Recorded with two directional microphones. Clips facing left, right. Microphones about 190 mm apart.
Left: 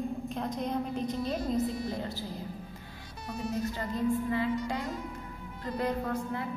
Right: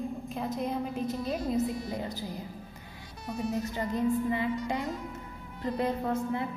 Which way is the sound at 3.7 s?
20° right (ahead or behind).